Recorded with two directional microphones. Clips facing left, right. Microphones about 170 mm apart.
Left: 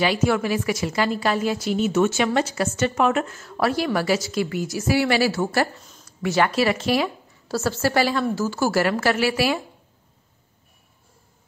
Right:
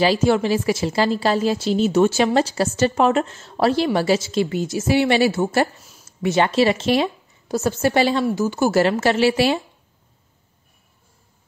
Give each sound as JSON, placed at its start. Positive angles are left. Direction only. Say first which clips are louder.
{"t": 0.0, "sound": "a woman's voice", "louder": "right 4 dB", "side_deg": -30}